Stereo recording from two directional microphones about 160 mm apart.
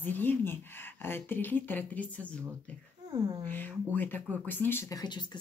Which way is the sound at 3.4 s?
10° left (ahead or behind).